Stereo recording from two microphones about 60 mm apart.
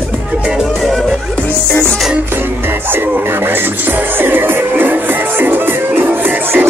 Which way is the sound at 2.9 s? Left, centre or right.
Right.